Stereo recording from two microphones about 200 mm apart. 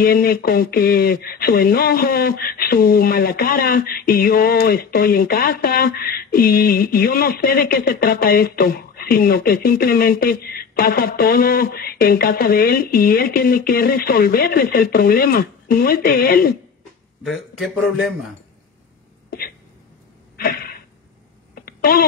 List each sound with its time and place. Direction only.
0.0 s speech: 50° left (ahead or behind)
17.2 s speech: centre (ahead or behind)
20.3 s a sound: 50° left (ahead or behind)